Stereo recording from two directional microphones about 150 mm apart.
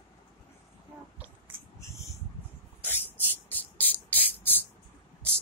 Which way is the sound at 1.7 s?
20° left (ahead or behind).